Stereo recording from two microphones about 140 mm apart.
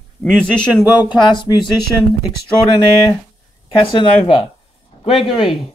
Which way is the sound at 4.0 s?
35° left (ahead or behind).